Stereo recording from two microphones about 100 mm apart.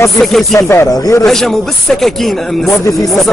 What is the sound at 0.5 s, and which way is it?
Speech, 30° left (ahead or behind).